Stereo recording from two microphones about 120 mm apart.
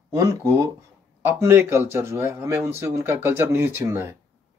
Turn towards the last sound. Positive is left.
turn(degrees=-20)  # may be behind; listen again after turning